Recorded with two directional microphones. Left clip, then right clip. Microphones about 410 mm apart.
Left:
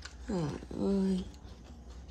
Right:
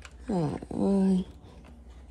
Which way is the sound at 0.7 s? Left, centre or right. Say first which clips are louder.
Right 5 dB; right.